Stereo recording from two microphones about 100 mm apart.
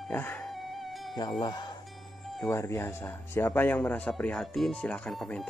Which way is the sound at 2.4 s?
30° left (ahead or behind).